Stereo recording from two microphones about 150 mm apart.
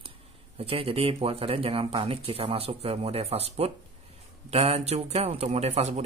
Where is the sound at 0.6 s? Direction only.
40° right (ahead or behind).